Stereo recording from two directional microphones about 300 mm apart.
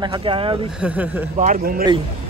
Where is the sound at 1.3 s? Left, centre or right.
Right.